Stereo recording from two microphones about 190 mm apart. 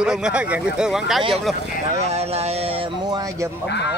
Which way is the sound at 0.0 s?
5° right (ahead or behind).